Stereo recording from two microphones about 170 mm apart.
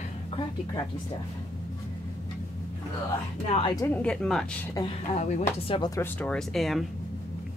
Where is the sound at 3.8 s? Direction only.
5° left (ahead or behind).